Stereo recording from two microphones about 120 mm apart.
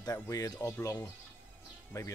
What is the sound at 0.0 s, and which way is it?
Speech, 30° left (ahead or behind).